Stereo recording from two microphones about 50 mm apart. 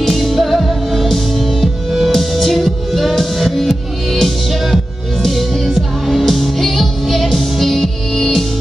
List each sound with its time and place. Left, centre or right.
0.0 s music: centre